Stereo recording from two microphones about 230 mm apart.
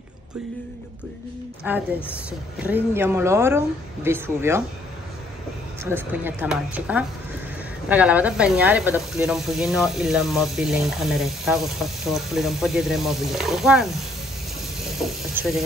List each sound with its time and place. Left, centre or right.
2.6 s a woman's voice: centre
5.9 s a woman's voice: centre
15.0 s speech: centre